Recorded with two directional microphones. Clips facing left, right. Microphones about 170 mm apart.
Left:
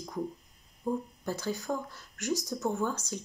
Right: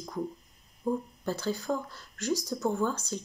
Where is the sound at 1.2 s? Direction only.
15° left (ahead or behind).